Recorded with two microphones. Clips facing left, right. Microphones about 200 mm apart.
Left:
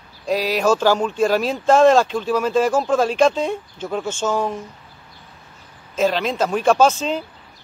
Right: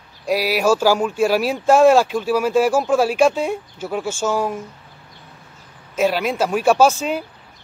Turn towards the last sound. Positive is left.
turn(degrees=-10)  # may be behind; listen again after turning